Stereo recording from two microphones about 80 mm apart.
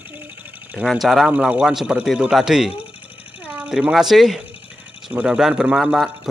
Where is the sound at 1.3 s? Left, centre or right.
Centre.